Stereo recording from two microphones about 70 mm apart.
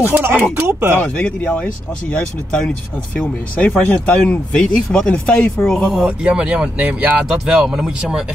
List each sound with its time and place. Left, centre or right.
0.0 s speech: right
0.9 s speech: left
5.9 s speech: centre
7.4 s speech: centre